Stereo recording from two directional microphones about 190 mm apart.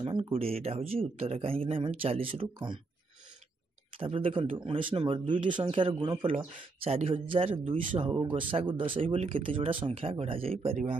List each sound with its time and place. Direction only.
0.0 s speech: 30° right (ahead or behind)
4.0 s speech: 30° right (ahead or behind)